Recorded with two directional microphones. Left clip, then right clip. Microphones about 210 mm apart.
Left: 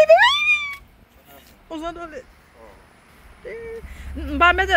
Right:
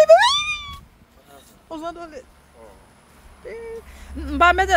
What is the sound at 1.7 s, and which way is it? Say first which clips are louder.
Speech: left 1 dB; 10° left (ahead or behind).